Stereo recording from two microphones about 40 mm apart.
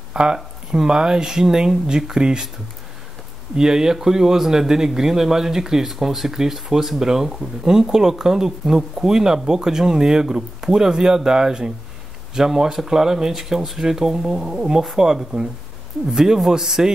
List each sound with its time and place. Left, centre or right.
0.1 s speech: centre
3.5 s speech: centre